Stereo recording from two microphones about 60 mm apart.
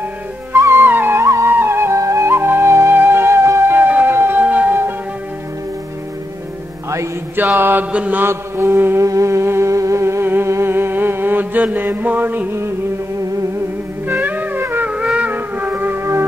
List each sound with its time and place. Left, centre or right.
0.6 s music: right
0.8 s music: right
1.5 s music: right
2.0 s music: right
7.3 s mantra: right
7.9 s mantra: right
8.2 s mantra: right
9.0 s a sound: right
10.2 s humming: right
10.5 s mantra: right
14.0 s music: right
14.9 s music: centre
16.0 s music: right